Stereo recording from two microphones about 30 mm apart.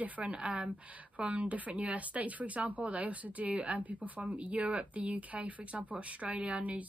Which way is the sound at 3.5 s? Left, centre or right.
Right.